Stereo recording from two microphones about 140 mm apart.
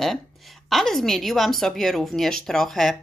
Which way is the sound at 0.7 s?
Centre (ahead or behind).